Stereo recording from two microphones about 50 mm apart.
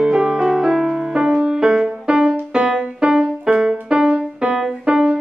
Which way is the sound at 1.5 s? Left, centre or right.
Centre.